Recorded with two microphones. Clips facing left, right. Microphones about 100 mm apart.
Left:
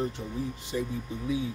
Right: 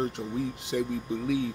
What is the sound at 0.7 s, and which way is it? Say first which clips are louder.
Speech: right 3 dB; 75° right (ahead or behind).